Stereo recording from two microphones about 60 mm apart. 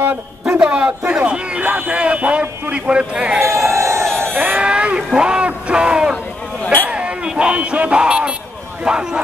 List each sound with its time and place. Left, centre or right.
0.7 s speech: centre
3.3 s speech: right
3.7 s a sound: right
4.6 s speech: centre
6.6 s a sound: left
6.9 s speech: centre